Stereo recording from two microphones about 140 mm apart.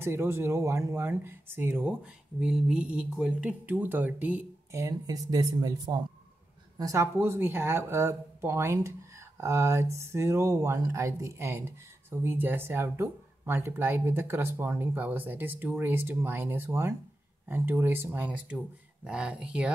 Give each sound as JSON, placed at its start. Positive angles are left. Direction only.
{"t": 0.0, "sound": "speech", "side_deg": -15}
{"t": 4.7, "sound": "speech", "side_deg": -25}